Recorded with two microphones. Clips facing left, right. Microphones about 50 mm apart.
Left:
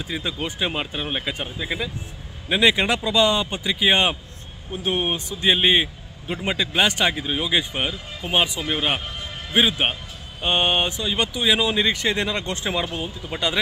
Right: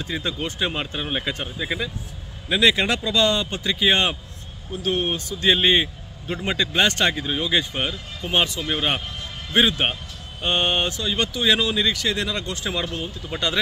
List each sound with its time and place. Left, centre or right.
0.0 s speech: centre
2.5 s speech: centre
11.7 s speech: left